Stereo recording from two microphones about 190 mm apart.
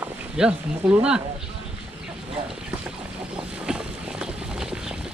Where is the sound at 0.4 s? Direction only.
5° right (ahead or behind).